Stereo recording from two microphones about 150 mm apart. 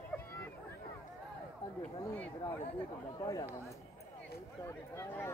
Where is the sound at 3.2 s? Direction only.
25° left (ahead or behind).